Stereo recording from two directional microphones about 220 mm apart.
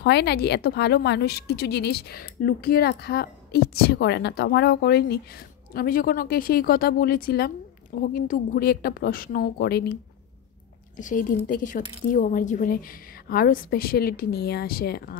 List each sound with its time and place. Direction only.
0.0 s speech: 50° left (ahead or behind)
11.0 s a woman's voice: 35° left (ahead or behind)